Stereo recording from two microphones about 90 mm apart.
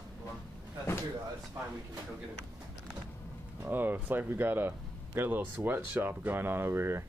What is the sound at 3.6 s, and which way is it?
Speech, 20° right (ahead or behind).